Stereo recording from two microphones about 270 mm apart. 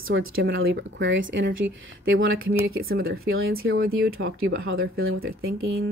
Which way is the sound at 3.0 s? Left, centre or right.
Right.